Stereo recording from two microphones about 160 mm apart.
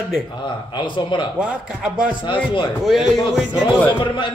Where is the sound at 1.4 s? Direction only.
5° right (ahead or behind).